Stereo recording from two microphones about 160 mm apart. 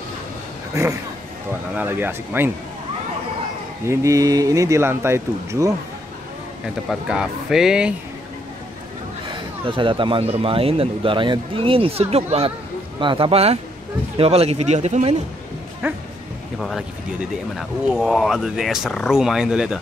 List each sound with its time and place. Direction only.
1.8 s speech: 10° right (ahead or behind)
3.8 s speech: 20° right (ahead or behind)
6.9 s speech: 5° right (ahead or behind)
9.7 s speech: 30° right (ahead or behind); by 15.1 s 45° right (ahead or behind)
15.8 s speech: 15° right (ahead or behind)
16.5 s speech: centre (ahead or behind)